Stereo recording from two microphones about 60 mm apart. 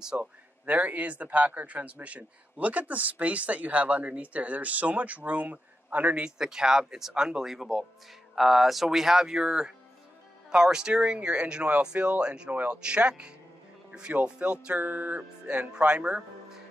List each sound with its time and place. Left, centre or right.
0.2 s speech: right
14.8 s music: right
15.4 s speech: centre